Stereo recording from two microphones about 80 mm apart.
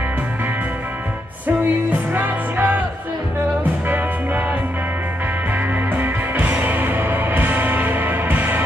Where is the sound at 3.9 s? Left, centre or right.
Right.